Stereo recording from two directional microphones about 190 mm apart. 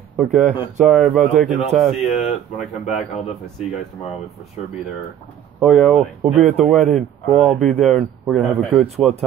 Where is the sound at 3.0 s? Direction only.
35° left (ahead or behind).